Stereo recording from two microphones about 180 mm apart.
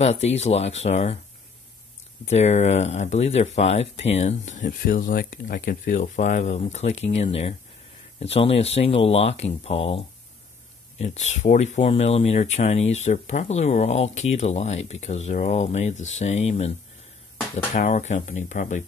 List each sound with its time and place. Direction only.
0.0 s speech: 35° left (ahead or behind)
2.2 s speech: 35° left (ahead or behind)
17.7 s speech: 40° left (ahead or behind)